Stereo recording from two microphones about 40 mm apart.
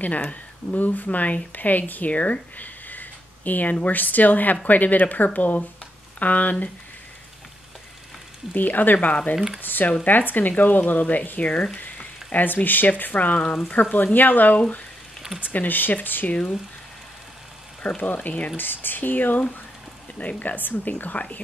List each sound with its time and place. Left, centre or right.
0.0 s speech: left
8.5 s speech: left
10.5 s speech: left
11.5 s speech: left
12.3 s speech: left
17.8 s speech: left
18.6 s speech: left